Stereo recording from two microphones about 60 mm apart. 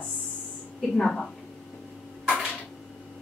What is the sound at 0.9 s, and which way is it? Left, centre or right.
Speech, centre.